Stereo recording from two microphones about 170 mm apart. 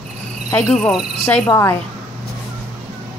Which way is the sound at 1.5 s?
15° left (ahead or behind).